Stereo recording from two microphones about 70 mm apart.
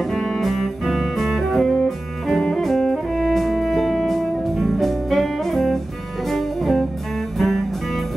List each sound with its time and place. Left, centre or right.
0.0 s music: centre